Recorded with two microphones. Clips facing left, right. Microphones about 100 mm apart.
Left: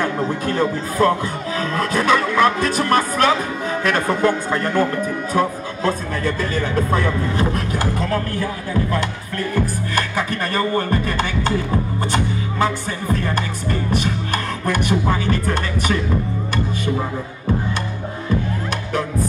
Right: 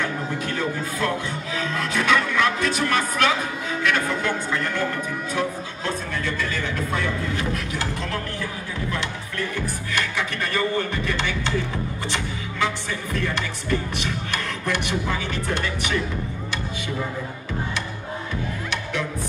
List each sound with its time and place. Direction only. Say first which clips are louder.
0.0 s music: left 6 dB; 40° left (ahead or behind)
1.6 s speech: left 5 dB; 45° left (ahead or behind)
3.8 s music: left 6 dB; 40° left (ahead or behind)
5.3 s speech: left 7 dB; 45° left (ahead or behind)
9.9 s music: left 4 dB; 40° left (ahead or behind)